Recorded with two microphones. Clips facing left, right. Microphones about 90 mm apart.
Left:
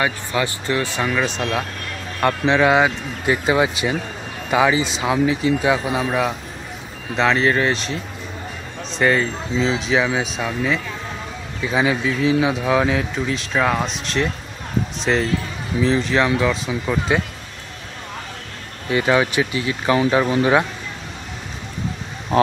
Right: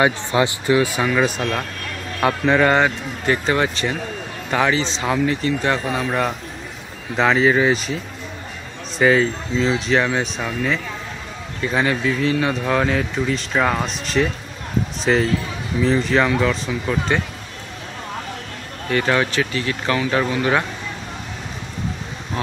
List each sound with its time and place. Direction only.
0.0 s speech: 25° right (ahead or behind)
0.7 s speech: 10° right (ahead or behind); by 17.2 s 5° left (ahead or behind)
18.9 s speech: 15° left (ahead or behind)